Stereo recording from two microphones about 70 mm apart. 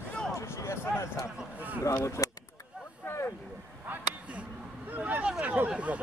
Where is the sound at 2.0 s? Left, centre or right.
Left.